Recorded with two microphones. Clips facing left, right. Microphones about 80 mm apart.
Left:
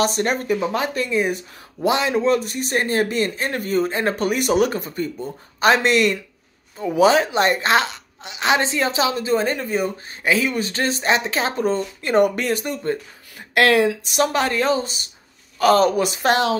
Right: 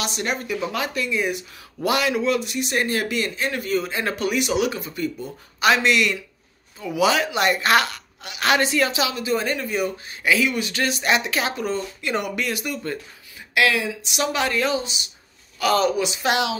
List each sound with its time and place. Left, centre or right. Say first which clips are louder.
0.0 s a woman's voice: left 6 dB; left
1.8 s a woman's voice: left 2 dB; left
13.6 s speech: left 5 dB; left
14.0 s a woman's voice: left 4 dB; left